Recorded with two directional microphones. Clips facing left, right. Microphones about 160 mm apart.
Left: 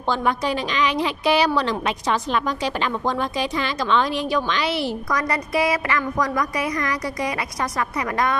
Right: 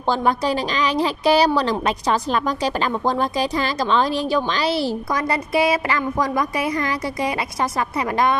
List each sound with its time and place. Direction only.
0.1 s a woman's voice: 35° right (ahead or behind)